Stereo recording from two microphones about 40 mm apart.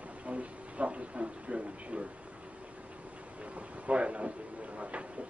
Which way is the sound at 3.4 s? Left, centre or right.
Right.